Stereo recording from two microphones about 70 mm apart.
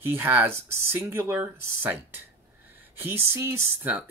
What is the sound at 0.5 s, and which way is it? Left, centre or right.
Speech, right.